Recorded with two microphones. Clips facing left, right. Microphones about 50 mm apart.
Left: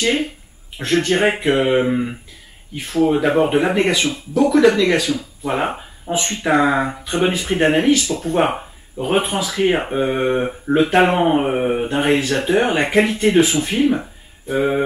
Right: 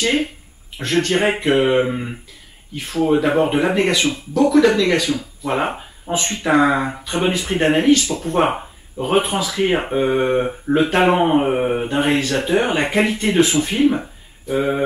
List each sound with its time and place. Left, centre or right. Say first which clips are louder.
0.0 s speech: even; centre
5.5 s speech: even; centre
9.0 s speech: left 1 dB; centre
9.4 s speech: left 1 dB; centre
11.1 s speech: right 1 dB; centre
12.4 s speech: left 1 dB; centre